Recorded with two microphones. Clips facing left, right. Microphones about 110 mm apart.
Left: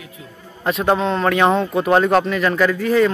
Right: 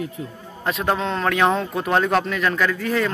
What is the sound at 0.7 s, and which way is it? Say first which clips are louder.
Speech: left 5 dB; centre (ahead or behind).